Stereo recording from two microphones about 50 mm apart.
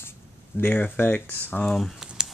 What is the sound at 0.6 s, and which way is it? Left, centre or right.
Speech, left.